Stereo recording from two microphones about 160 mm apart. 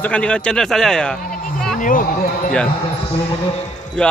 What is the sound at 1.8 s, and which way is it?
Speech, 60° left (ahead or behind).